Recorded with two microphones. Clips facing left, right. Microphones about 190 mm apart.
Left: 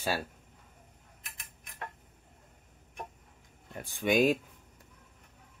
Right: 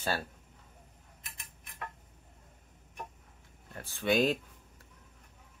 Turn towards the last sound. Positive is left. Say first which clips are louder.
# left 2 dB
turn(degrees=10)  # may be behind; listen again after turning